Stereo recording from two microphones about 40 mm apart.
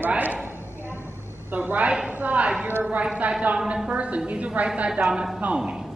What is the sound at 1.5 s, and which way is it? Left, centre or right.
A man's voice, right.